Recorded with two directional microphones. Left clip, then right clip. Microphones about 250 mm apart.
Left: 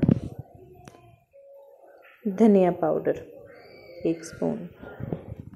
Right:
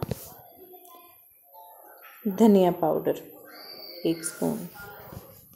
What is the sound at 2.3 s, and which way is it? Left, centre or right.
Speech, centre.